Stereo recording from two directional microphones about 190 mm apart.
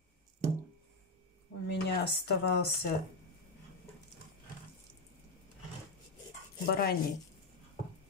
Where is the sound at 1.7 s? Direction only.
60° left (ahead or behind).